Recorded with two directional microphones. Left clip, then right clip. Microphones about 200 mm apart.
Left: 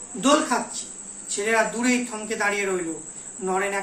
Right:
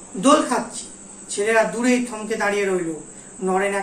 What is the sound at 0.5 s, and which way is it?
A woman's voice, 15° left (ahead or behind).